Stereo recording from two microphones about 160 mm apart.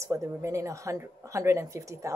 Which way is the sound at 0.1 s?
20° right (ahead or behind).